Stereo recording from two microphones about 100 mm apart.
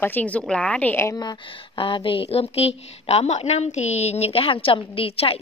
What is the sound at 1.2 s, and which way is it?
A woman's voice, 50° left (ahead or behind).